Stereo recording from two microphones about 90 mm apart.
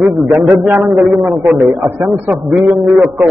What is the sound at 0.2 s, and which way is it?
Speech, 30° right (ahead or behind).